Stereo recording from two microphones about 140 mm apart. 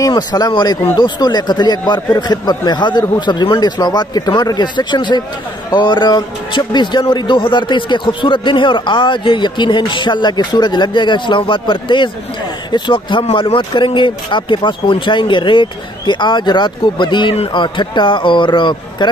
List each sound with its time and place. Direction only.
0.0 s a man's voice: 30° left (ahead or behind)